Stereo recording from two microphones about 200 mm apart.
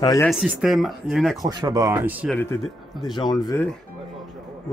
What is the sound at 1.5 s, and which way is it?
Speech, 20° right (ahead or behind).